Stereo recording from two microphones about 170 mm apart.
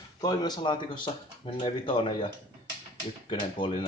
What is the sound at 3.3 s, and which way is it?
Speech, 30° left (ahead or behind).